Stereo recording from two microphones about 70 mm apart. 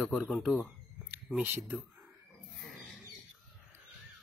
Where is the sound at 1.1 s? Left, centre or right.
Right.